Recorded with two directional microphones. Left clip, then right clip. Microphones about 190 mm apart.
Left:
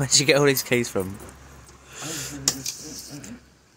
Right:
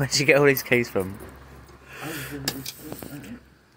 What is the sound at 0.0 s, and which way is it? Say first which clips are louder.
Speech: even; 20° left (ahead or behind).